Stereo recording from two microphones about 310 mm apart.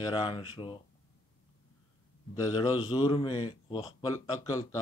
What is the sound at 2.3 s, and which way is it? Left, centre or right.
A man's voice, centre.